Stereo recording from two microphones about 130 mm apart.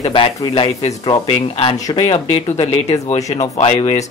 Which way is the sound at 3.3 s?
55° left (ahead or behind).